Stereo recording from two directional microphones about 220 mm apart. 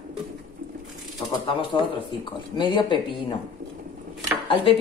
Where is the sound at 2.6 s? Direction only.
20° left (ahead or behind).